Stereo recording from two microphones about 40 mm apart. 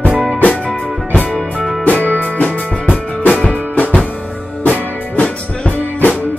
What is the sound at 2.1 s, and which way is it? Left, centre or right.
Music, right.